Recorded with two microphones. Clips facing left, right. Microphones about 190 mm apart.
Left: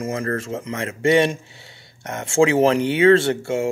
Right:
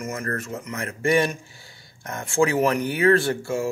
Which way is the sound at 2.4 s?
25° left (ahead or behind).